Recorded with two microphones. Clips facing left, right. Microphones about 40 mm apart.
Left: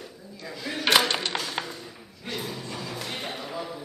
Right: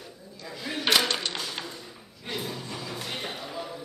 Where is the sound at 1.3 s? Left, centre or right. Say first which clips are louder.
Left 4 dB; left.